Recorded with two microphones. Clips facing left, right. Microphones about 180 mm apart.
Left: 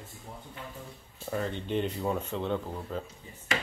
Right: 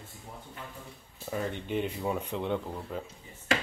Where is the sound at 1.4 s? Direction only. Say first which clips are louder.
Left 1 dB; 10° right (ahead or behind).